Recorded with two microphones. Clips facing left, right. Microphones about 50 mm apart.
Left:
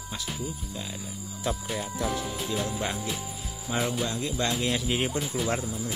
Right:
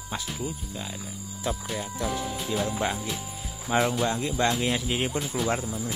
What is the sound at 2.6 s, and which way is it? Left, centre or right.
Speech, centre.